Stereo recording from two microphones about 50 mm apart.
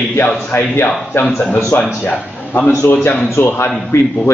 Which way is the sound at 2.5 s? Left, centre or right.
Left.